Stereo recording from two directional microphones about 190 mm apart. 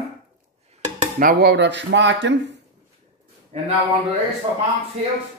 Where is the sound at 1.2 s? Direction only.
55° right (ahead or behind); by 2.6 s 70° right (ahead or behind).